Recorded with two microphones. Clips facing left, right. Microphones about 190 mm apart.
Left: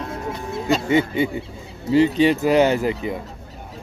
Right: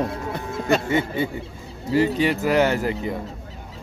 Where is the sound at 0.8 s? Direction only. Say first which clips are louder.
Left 4 dB; 15° left (ahead or behind).